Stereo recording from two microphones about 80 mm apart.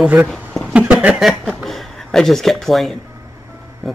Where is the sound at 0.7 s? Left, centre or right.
Centre.